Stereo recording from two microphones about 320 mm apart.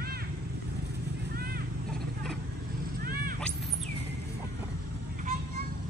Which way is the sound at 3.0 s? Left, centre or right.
Right.